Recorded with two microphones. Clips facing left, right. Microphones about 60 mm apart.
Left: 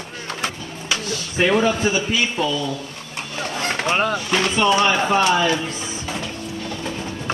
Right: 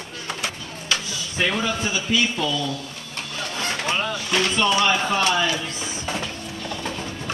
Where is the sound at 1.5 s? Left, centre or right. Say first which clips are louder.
Left 10 dB; left.